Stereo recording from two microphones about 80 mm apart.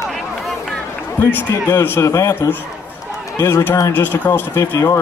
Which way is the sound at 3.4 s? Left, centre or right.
Left.